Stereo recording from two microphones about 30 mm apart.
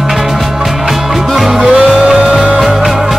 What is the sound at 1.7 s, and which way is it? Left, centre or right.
Music, right.